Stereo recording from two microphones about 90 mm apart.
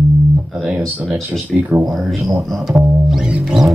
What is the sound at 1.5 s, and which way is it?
Speech, 5° right (ahead or behind).